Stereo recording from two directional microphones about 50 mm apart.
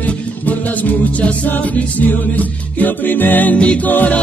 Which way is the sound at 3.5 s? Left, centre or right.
Left.